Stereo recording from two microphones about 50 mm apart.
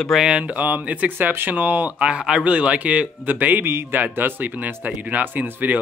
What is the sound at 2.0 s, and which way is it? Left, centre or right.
Speech, right.